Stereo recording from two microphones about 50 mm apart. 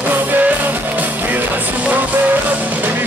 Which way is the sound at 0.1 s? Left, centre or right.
Right.